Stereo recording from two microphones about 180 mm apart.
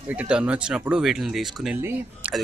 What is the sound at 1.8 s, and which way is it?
Speech, 10° right (ahead or behind).